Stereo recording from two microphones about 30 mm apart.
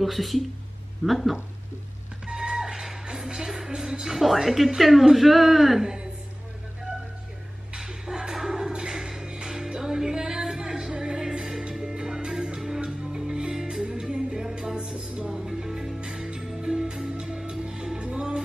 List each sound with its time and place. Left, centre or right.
0.0 s speech: centre
2.2 s music: right
4.2 s speech: centre
7.8 s music: centre
8.6 s music: right
9.7 s music: centre